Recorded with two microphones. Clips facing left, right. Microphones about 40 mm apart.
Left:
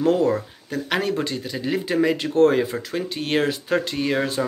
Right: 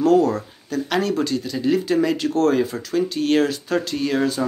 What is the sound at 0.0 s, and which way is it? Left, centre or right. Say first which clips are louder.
Speech: right 3 dB; left.